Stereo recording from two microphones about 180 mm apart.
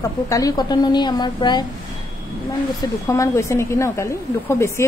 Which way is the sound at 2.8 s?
15° left (ahead or behind).